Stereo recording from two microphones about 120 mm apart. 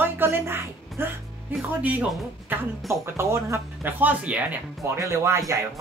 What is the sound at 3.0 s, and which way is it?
Speech, 20° right (ahead or behind).